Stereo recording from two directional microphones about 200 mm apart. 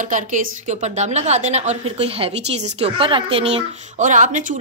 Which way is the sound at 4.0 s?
40° right (ahead or behind).